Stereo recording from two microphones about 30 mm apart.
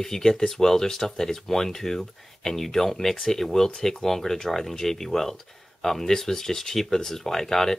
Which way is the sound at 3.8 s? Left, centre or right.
Centre.